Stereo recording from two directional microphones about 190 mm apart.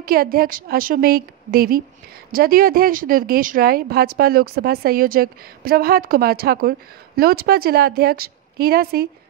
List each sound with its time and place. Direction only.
0.0 s a woman's voice: 50° right (ahead or behind)